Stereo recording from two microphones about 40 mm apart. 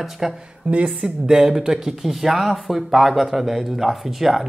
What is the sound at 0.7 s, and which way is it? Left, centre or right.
Speech, right.